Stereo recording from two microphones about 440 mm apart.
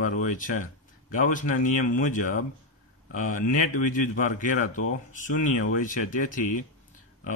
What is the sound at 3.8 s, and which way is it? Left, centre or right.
Speech, centre.